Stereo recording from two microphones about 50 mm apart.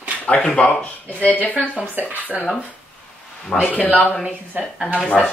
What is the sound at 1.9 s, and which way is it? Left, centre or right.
Speech, right.